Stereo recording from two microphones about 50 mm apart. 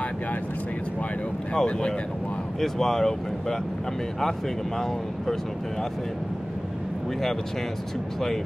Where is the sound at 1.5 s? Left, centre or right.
Centre.